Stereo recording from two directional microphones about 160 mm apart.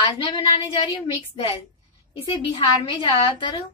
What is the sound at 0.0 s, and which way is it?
A woman's voice, 30° left (ahead or behind).